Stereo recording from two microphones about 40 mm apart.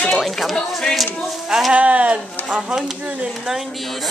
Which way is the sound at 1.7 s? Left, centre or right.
Right.